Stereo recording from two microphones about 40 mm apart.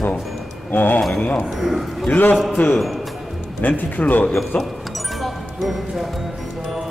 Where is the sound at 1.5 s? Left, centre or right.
Centre.